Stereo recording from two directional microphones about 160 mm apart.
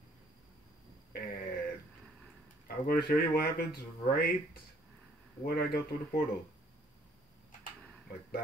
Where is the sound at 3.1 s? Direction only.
65° left (ahead or behind).